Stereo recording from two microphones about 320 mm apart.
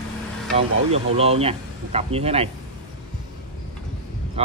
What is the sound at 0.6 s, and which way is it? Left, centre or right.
Speech, centre.